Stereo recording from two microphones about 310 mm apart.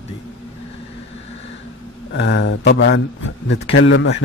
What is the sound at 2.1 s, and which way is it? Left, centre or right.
A man's voice, left.